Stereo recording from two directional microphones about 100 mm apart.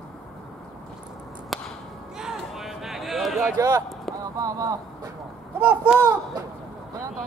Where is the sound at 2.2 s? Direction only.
5° right (ahead or behind).